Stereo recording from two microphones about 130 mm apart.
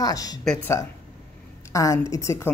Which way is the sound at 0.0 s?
30° left (ahead or behind).